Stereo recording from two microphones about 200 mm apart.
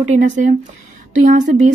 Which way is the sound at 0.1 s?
35° right (ahead or behind).